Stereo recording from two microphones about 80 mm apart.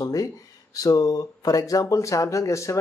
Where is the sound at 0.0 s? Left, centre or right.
Left.